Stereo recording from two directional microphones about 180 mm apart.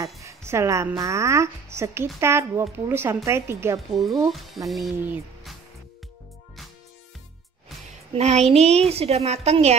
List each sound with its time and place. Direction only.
0.2 s a woman's voice: 15° right (ahead or behind)
3.9 s speech: centre (ahead or behind)
8.1 s a woman's voice: 35° right (ahead or behind)